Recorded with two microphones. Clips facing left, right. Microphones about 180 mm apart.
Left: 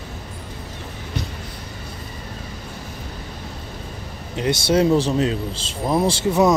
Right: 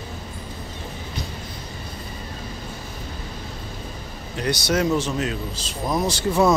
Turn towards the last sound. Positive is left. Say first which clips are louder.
# left 2 dB
turn(degrees=25)  # may be behind; listen again after turning